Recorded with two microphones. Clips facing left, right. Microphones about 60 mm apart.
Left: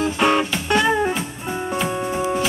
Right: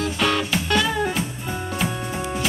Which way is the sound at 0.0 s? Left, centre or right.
Left.